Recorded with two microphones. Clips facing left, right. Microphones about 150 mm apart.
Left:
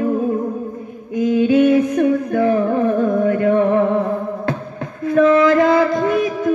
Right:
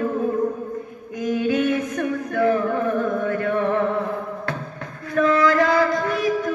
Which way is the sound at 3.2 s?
20° left (ahead or behind).